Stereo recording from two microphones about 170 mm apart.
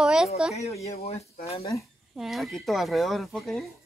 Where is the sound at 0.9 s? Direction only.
40° left (ahead or behind).